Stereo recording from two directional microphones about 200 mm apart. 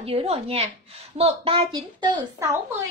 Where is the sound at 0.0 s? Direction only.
30° right (ahead or behind).